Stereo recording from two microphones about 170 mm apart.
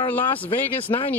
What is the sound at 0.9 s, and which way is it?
Speech, 25° left (ahead or behind).